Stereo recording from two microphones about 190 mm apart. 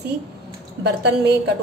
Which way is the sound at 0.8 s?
60° right (ahead or behind).